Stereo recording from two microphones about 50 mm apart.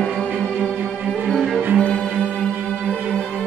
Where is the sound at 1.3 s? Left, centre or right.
Centre.